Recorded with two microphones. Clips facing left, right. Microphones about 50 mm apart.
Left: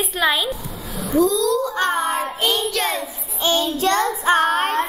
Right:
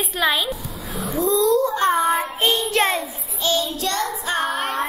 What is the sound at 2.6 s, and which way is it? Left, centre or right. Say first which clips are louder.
Speech: right 2 dB; right.